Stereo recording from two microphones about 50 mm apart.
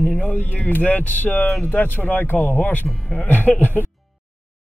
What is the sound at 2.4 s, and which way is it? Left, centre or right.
Speech, left.